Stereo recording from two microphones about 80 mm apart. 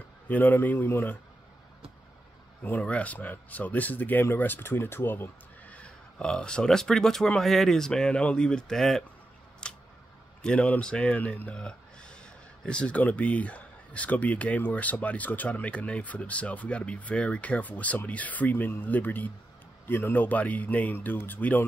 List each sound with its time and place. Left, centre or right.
0.3 s speech: left
2.8 s speech: centre
9.6 s a sound: centre
10.4 s speech: centre